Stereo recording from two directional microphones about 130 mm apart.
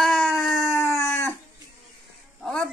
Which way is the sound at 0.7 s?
20° left (ahead or behind).